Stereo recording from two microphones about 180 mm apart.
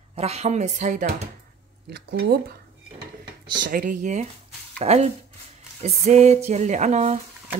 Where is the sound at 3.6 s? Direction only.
50° right (ahead or behind).